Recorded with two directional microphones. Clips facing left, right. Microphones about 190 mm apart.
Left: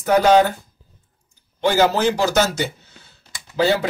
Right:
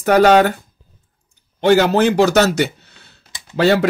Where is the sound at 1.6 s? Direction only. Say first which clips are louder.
Right 4 dB; 60° right (ahead or behind).